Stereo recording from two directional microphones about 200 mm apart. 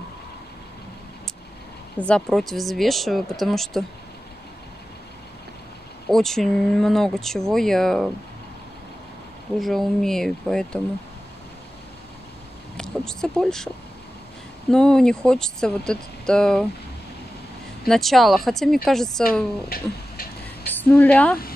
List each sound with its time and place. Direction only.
2.0 s speech: 5° left (ahead or behind)
6.0 s speech: centre (ahead or behind)
9.6 s speech: centre (ahead or behind)
12.7 s speech: 5° left (ahead or behind)
14.7 s speech: 5° left (ahead or behind)
17.8 s speech: centre (ahead or behind)
20.7 s speech: 10° left (ahead or behind)